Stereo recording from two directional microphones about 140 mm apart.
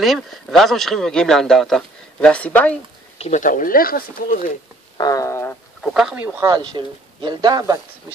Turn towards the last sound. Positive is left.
turn(degrees=-25)  # may be behind; listen again after turning